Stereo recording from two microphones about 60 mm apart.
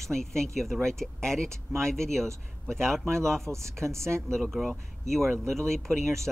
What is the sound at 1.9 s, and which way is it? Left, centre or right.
Speech, centre.